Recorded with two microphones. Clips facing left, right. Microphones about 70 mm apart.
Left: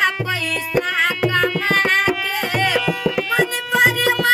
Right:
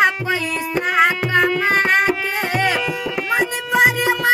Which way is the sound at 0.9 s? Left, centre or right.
Right.